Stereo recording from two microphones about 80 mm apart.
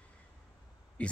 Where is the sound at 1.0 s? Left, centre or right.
Centre.